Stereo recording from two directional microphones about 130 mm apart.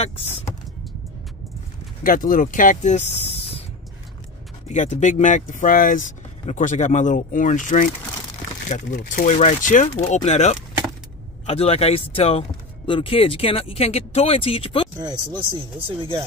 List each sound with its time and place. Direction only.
2.0 s speech: 90° left; by 3.6 s 50° left (ahead or behind)
4.6 s speech: 65° left (ahead or behind); by 6.1 s 90° left
6.4 s speech: 75° left (ahead or behind); by 14.9 s 45° left (ahead or behind)
15.9 s speech: 40° right (ahead or behind)